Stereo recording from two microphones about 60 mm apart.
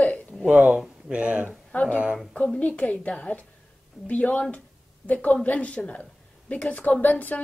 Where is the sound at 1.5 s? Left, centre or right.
Left.